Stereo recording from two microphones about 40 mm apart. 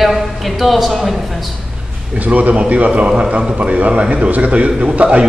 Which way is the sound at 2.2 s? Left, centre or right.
Right.